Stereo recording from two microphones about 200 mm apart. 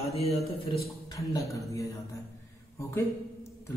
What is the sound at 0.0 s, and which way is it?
Speech, 30° left (ahead or behind).